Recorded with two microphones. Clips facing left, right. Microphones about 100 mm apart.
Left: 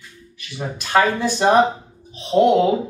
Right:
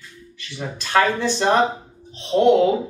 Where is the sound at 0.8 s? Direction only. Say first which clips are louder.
Left 1 dB; 10° left (ahead or behind).